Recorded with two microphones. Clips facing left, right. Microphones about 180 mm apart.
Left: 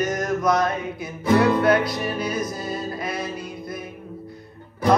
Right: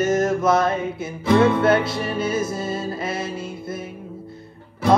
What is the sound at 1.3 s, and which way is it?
Music, 25° right (ahead or behind).